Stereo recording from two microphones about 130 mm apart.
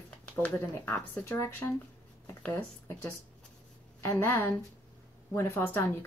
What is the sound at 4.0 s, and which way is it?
Speech, 20° left (ahead or behind).